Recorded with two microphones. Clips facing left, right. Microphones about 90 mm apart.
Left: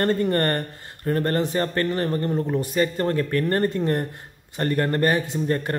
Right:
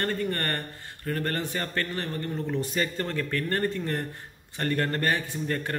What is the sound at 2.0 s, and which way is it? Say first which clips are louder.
Speech: left 8 dB; 45° left (ahead or behind).